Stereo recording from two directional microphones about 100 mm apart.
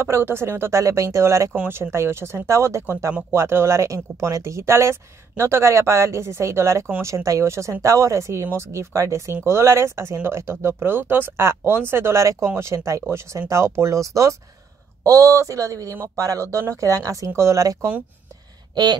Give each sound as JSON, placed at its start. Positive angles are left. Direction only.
{"t": 0.0, "sound": "speech", "side_deg": -25}